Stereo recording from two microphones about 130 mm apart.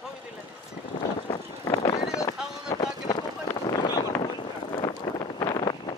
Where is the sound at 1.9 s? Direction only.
25° left (ahead or behind).